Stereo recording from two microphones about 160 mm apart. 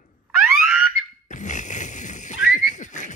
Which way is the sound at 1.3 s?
50° left (ahead or behind).